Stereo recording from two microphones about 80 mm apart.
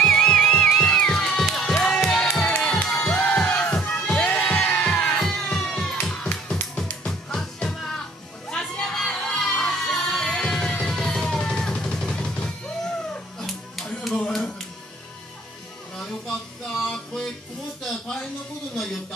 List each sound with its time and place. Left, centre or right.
0.0 s music: centre
2.4 s music: centre
13.1 s a sound: centre
16.0 s music: centre